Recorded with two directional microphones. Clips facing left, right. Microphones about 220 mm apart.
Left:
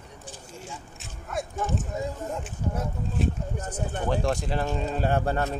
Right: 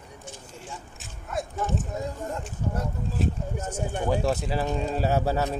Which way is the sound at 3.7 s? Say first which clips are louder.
Right 2 dB; 10° right (ahead or behind).